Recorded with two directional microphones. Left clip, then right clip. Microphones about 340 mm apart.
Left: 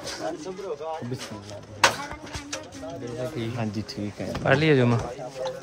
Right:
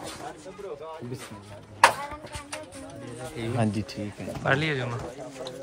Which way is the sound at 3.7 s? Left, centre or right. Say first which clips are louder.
Even; centre.